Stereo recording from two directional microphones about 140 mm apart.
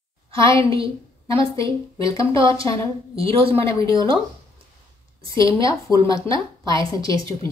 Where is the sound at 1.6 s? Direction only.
25° left (ahead or behind).